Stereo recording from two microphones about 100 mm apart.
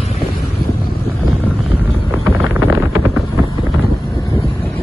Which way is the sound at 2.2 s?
30° right (ahead or behind).